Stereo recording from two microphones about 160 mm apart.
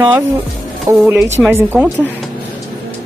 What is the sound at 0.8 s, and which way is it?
A woman's voice, 15° right (ahead or behind).